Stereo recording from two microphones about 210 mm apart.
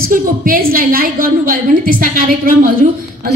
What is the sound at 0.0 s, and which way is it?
A woman's voice, 45° right (ahead or behind).